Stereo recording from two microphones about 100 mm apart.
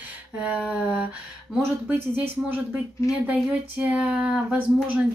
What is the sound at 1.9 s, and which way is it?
Speech, 20° right (ahead or behind).